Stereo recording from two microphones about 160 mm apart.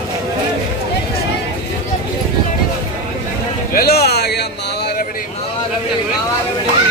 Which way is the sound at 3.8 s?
80° left.